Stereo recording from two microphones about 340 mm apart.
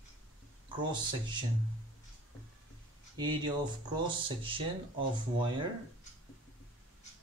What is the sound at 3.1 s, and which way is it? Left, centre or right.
Speech, centre.